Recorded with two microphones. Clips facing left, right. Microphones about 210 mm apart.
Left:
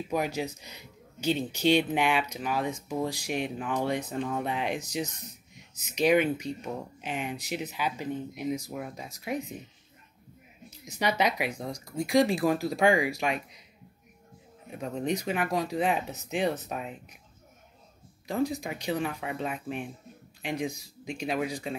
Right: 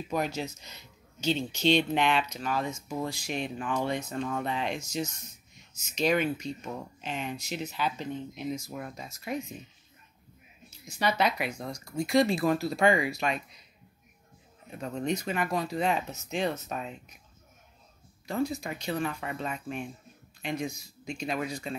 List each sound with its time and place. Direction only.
0.1 s speech: 10° left (ahead or behind)
10.7 s speech: 15° left (ahead or behind)
14.7 s speech: 15° left (ahead or behind)
18.2 s speech: 15° left (ahead or behind)